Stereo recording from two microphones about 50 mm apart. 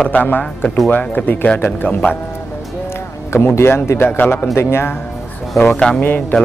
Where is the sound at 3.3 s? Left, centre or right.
Left.